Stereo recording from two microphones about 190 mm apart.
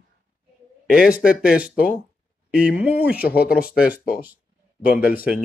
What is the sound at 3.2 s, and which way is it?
Speech, 55° left (ahead or behind).